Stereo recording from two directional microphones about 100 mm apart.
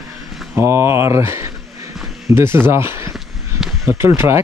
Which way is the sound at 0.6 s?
25° right (ahead or behind).